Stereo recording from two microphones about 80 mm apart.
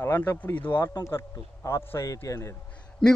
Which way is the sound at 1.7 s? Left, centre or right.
Left.